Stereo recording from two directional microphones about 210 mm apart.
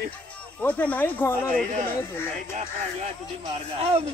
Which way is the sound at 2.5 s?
30° right (ahead or behind).